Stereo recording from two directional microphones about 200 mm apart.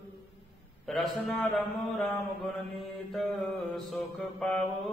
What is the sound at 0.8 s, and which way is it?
Mantra, centre (ahead or behind).